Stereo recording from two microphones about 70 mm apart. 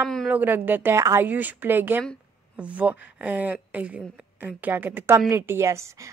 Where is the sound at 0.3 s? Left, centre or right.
Right.